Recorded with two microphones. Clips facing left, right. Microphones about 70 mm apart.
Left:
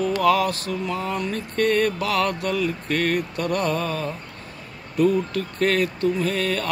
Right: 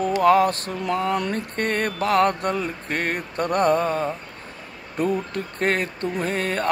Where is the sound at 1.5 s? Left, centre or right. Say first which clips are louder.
Left 8 dB; right.